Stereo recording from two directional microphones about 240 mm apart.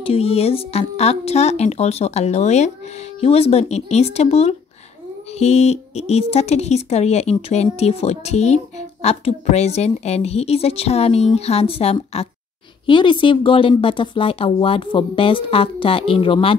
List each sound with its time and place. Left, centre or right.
0.0 s speech: left